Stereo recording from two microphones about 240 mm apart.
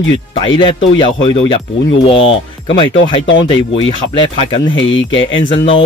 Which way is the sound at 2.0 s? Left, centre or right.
Left.